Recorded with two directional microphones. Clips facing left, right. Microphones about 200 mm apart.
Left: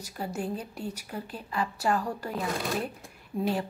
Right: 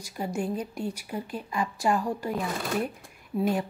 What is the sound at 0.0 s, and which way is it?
A woman's voice, 10° right (ahead or behind).